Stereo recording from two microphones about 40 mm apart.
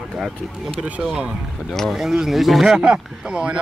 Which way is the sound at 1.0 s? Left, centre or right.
Right.